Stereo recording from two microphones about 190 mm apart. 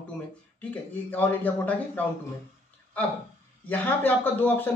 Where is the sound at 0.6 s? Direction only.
10° left (ahead or behind).